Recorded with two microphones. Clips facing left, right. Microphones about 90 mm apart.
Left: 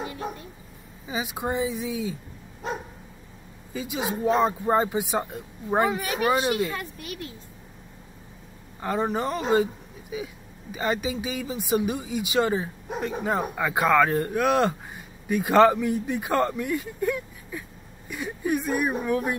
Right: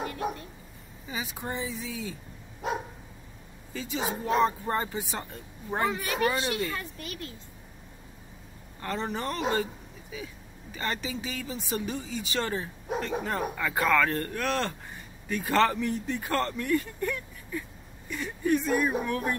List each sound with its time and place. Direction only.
0.0 s a sound: 5° left (ahead or behind)
1.0 s speech: 15° left (ahead or behind)
2.6 s speech: 5° right (ahead or behind)
3.7 s speech: 10° left (ahead or behind)
4.4 s speech: 20° left (ahead or behind)
8.8 s speech: 10° left (ahead or behind)